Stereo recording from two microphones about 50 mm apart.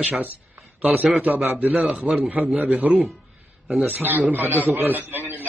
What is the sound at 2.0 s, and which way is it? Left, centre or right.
Speech, right.